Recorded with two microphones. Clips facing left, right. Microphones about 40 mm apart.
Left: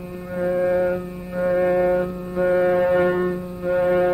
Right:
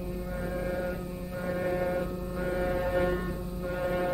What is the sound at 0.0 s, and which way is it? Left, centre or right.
Music, left.